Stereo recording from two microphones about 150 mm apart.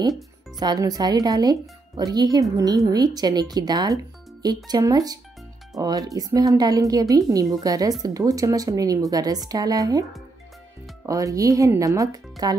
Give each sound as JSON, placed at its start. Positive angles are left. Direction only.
{"t": 0.6, "sound": "speech", "side_deg": -25}
{"t": 11.1, "sound": "speech", "side_deg": -20}